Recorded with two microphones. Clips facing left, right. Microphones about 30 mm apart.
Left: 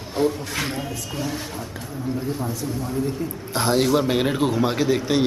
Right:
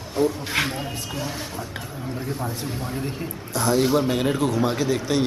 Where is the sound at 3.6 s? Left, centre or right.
Left.